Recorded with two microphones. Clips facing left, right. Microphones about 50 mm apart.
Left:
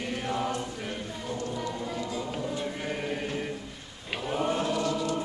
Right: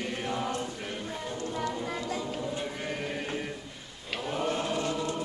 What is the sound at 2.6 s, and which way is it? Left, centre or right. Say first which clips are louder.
Choir: left 2 dB; centre.